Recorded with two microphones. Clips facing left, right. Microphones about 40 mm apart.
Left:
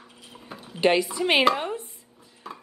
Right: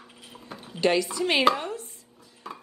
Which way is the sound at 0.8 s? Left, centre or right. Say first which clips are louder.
Left 2 dB; left.